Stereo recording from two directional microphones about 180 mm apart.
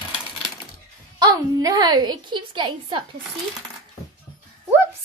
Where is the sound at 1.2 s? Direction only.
20° right (ahead or behind).